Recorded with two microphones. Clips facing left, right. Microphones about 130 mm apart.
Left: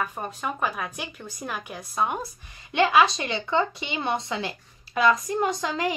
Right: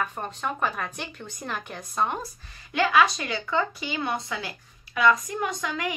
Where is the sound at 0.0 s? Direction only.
5° left (ahead or behind).